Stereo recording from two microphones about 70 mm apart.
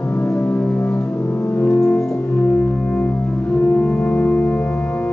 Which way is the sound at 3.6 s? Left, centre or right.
Left.